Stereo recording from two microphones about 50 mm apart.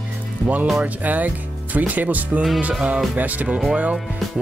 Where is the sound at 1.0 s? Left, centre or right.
Right.